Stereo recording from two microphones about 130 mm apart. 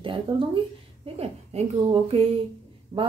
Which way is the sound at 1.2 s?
50° right (ahead or behind).